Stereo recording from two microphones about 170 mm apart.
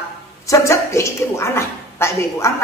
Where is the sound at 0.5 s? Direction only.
15° left (ahead or behind).